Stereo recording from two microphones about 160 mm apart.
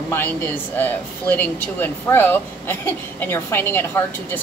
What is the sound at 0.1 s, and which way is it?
Speech, 10° left (ahead or behind).